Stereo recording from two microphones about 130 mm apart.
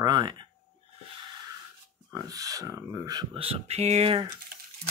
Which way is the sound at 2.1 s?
25° right (ahead or behind).